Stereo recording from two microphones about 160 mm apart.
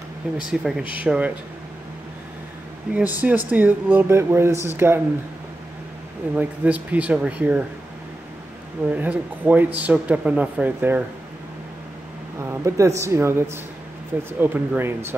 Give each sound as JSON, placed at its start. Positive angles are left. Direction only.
{"t": 0.5, "sound": "speech", "side_deg": -5}
{"t": 2.9, "sound": "speech", "side_deg": -10}
{"t": 6.3, "sound": "speech", "side_deg": -10}
{"t": 8.8, "sound": "speech", "side_deg": -10}
{"t": 12.4, "sound": "a woman's voice", "side_deg": -20}
{"t": 14.4, "sound": "speech", "side_deg": -10}